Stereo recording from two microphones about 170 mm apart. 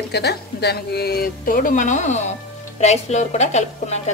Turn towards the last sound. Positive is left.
turn(degrees=40)  # may be behind; listen again after turning